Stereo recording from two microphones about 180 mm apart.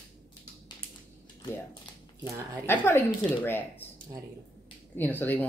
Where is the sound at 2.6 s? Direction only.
15° left (ahead or behind).